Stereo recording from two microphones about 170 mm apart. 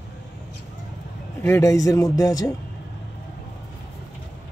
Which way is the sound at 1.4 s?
15° left (ahead or behind).